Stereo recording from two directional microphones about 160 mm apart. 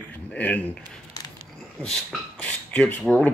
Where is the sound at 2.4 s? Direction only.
10° left (ahead or behind).